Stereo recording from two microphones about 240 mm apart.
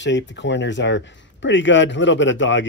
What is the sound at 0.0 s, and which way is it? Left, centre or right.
Speech, left.